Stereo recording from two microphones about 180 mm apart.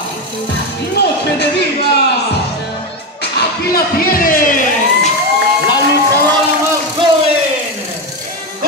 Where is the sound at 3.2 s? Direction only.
60° left (ahead or behind).